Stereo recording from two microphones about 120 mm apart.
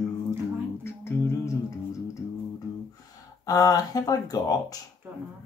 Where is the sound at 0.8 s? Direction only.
20° left (ahead or behind).